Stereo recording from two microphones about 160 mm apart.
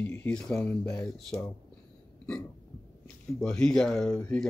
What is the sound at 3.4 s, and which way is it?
Speech, 5° left (ahead or behind).